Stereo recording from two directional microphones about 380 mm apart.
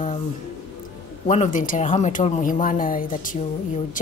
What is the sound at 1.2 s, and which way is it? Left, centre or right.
Speech, centre.